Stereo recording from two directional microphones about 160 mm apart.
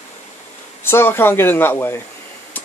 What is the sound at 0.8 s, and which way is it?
Speech, 15° left (ahead or behind).